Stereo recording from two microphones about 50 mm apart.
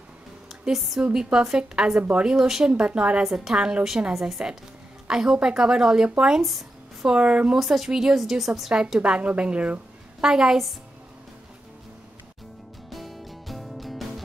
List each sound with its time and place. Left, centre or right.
0.7 s a woman's voice: centre
1.5 s a woman's voice: centre
2.3 s a woman's voice: centre
2.7 s a woman's voice: right
3.3 s a woman's voice: centre
6.4 s a sound: centre
7.1 s a woman's voice: right
7.5 s a woman's voice: centre
9.0 s a woman's voice: centre
10.2 s a woman's voice: centre
12.9 s music: centre